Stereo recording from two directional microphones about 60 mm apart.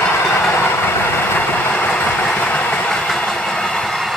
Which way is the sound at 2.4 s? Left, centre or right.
Left.